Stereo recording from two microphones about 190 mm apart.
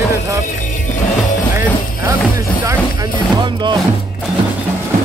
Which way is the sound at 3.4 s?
25° right (ahead or behind).